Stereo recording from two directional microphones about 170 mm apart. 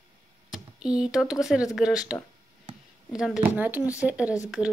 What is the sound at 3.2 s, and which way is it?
Speech, 5° right (ahead or behind).